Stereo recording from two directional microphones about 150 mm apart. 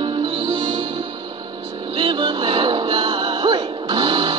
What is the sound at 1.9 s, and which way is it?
Music, 35° right (ahead or behind).